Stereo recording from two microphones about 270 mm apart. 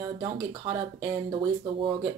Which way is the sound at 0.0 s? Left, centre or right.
Centre.